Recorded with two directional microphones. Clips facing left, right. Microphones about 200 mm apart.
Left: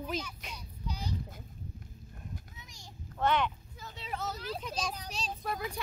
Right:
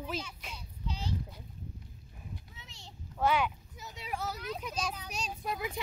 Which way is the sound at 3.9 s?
10° right (ahead or behind).